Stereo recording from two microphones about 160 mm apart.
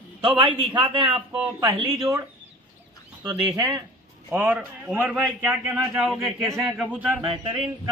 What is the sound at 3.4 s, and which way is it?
Speech, 25° right (ahead or behind).